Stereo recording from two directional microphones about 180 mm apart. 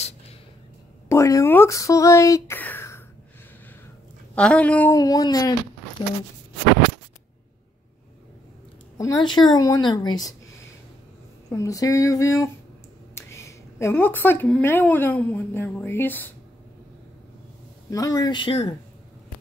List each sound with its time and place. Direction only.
1.0 s speech: 15° left (ahead or behind)
4.4 s speech: 5° left (ahead or behind)
4.9 s a woman's voice: 20° left (ahead or behind)
8.9 s a woman's voice: 20° left (ahead or behind)
11.4 s a woman's voice: 20° left (ahead or behind)
17.8 s a woman's voice: 20° left (ahead or behind)